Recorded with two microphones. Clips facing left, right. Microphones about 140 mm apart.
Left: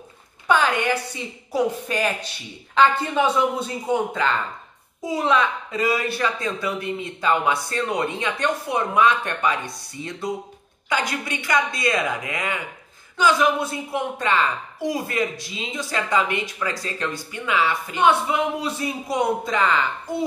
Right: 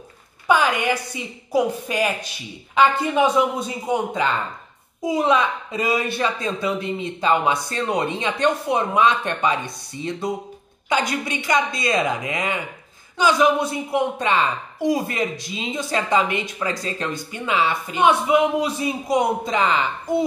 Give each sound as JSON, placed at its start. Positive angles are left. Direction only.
{"t": 0.5, "sound": "a woman's voice", "side_deg": -10}